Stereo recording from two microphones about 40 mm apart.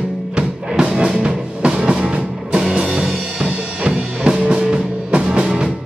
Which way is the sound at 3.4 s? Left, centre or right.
Right.